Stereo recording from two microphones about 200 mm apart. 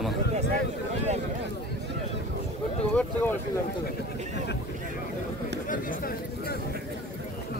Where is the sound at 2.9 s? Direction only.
5° left (ahead or behind).